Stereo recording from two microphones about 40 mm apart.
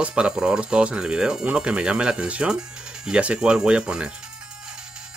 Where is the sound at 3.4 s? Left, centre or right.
Centre.